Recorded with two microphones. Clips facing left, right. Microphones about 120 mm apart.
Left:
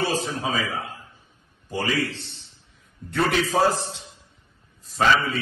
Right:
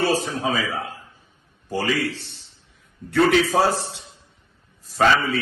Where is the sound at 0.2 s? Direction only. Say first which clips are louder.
Right 3 dB; 60° right (ahead or behind).